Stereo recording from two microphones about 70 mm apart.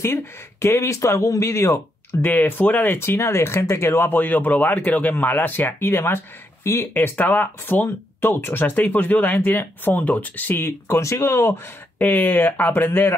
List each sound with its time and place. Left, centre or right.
0.0 s speech: left
2.2 s speech: left
6.9 s speech: left
10.6 s speech: left
12.0 s speech: left